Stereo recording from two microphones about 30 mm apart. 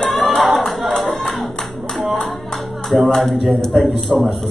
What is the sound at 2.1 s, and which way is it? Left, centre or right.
Clapping, centre.